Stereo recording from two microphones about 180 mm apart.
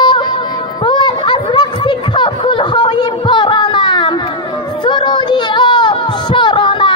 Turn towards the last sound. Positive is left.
turn(degrees=25)  # may be behind; listen again after turning